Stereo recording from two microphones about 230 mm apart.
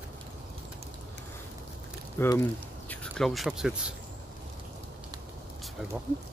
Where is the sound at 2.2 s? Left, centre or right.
Centre.